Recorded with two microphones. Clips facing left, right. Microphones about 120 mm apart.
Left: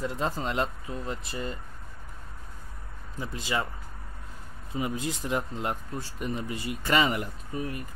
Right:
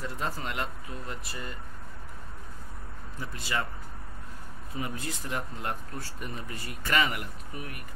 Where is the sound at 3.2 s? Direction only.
20° left (ahead or behind).